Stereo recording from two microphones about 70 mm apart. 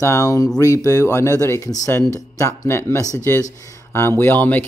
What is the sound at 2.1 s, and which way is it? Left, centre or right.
Speech, left.